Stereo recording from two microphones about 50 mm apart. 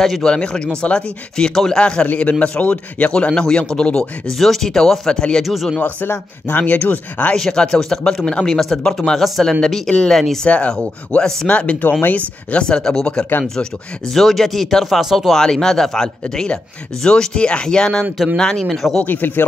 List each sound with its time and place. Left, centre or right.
0.0 s speech: centre
1.3 s speech: centre
1.8 s a man's voice: left
4.4 s speech: centre
5.4 s speech: centre
5.8 s speech: left
7.3 s speech: centre
10.1 s speech: centre
10.4 s a man's voice: left
12.6 s speech: centre
19.0 s speech: left